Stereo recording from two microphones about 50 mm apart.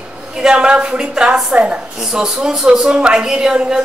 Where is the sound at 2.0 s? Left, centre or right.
Centre.